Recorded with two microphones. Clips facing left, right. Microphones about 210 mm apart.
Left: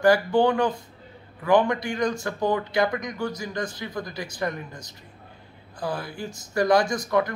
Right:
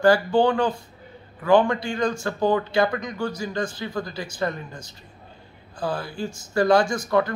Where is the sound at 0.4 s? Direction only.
20° left (ahead or behind).